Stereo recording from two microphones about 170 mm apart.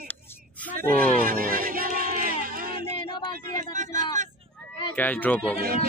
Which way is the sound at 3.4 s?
50° right (ahead or behind).